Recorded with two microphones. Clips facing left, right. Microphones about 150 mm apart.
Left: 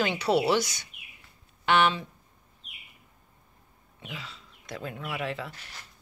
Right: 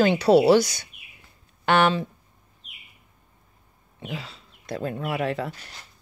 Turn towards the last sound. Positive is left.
turn(degrees=-45)  # may be behind; listen again after turning